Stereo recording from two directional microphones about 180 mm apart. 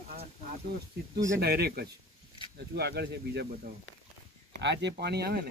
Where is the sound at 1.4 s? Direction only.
60° right (ahead or behind).